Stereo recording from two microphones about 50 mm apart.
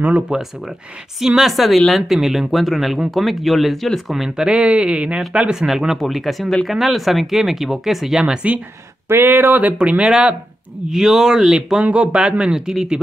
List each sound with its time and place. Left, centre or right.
0.3 s speech: centre
4.1 s speech: centre
5.9 s speech: centre
9.1 s a sound: right
9.8 s speech: right
10.9 s speech: centre